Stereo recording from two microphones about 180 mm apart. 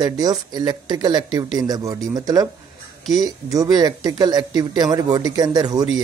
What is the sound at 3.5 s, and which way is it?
Speech, 20° right (ahead or behind).